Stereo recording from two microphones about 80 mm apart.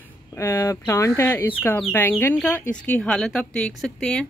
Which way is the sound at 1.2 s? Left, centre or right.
Left.